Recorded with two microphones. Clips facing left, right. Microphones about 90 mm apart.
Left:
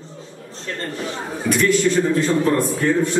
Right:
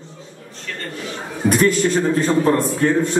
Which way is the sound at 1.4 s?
45° right (ahead or behind).